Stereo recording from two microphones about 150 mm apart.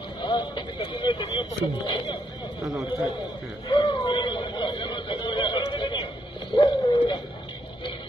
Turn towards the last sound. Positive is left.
turn(degrees=25)  # may be behind; listen again after turning